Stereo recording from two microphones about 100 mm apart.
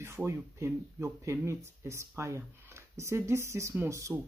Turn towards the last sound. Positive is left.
turn(degrees=-30)  # may be behind; listen again after turning